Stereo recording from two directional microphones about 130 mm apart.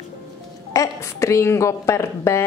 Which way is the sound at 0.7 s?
25° left (ahead or behind).